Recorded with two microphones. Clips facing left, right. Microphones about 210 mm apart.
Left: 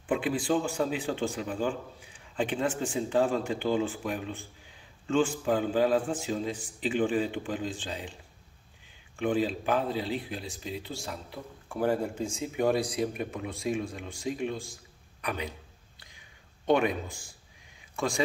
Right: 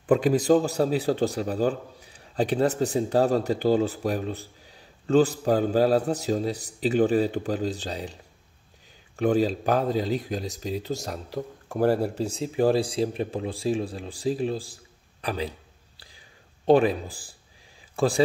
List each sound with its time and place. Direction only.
0.0 s speech: 40° right (ahead or behind)
16.0 s a sound: 35° right (ahead or behind)
17.9 s speech: 35° right (ahead or behind)